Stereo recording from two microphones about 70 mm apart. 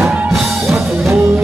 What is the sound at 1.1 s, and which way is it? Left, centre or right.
Music, right.